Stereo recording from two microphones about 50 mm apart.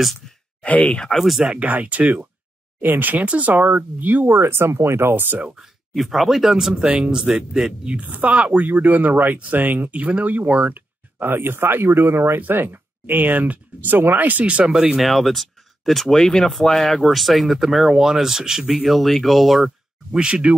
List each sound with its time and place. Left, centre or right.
0.6 s speech: left
1.4 s a woman's voice: centre
1.7 s speech: right
5.6 s speech: centre
7.9 s a woman's voice: right
8.6 s speech: right
12.4 s speech: right
14.4 s a woman's voice: right
15.0 s speech: centre
18.8 s speech: centre
20.1 s speech: centre